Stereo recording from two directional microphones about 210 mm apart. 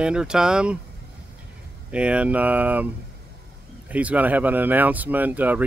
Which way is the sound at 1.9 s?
5° right (ahead or behind).